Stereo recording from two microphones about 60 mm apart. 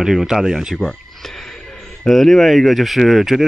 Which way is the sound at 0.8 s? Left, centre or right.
Centre.